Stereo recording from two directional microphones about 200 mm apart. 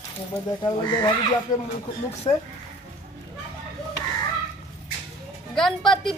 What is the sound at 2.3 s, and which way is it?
Speech, 20° left (ahead or behind).